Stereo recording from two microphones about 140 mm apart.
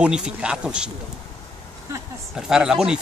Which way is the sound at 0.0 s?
5° right (ahead or behind).